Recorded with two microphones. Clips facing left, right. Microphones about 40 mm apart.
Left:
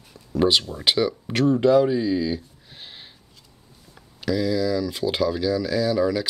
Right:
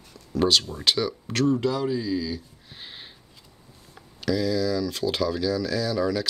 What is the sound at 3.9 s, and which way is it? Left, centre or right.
Speech, centre.